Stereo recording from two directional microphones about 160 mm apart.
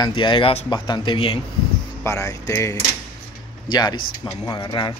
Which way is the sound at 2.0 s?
20° left (ahead or behind).